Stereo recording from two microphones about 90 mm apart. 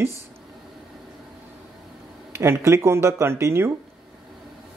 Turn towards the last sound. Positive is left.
turn(degrees=-30)  # may be behind; listen again after turning